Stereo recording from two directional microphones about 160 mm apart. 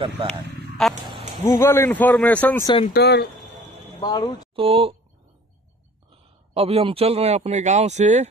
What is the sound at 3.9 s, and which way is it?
Speech, 30° left (ahead or behind).